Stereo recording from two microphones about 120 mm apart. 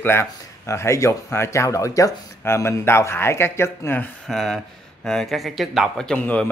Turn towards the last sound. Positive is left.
turn(degrees=10)  # may be behind; listen again after turning